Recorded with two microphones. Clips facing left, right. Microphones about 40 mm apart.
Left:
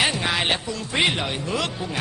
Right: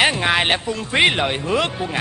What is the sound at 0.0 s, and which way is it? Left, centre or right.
Speech, right.